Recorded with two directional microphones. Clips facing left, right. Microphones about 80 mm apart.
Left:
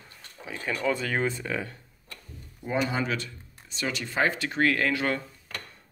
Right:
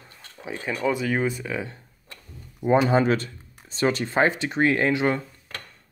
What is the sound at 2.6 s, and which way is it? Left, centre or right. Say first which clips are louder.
Speech: right 9 dB; right.